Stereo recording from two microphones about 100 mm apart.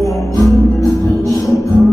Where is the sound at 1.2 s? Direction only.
35° left (ahead or behind).